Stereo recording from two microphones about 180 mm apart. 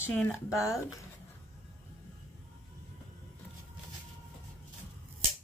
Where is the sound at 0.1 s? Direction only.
5° left (ahead or behind).